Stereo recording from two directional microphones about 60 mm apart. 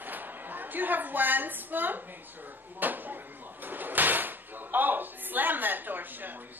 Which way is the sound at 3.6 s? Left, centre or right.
Right.